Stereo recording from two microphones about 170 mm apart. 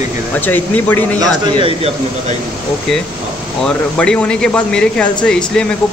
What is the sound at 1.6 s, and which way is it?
Speech, 35° right (ahead or behind).